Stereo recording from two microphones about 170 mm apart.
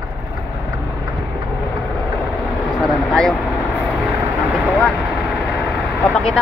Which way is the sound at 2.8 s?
Centre (ahead or behind).